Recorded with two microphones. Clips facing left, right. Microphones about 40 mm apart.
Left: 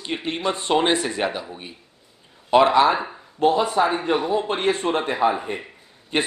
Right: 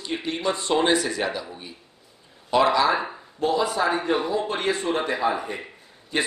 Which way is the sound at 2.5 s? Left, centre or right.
Left.